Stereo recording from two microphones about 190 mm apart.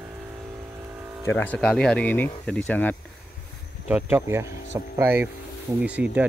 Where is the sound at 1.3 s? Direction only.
10° left (ahead or behind).